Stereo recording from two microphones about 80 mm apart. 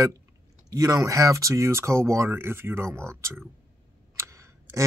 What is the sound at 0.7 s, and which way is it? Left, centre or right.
Speech, right.